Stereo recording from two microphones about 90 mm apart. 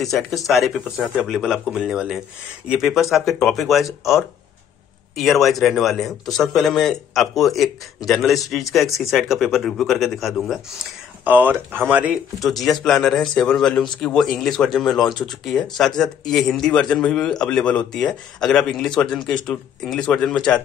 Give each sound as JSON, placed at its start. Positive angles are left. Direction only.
{"t": 0.0, "sound": "a man's voice", "side_deg": 0}
{"t": 11.2, "sound": "speech", "side_deg": -20}
{"t": 12.4, "sound": "a man's voice", "side_deg": 0}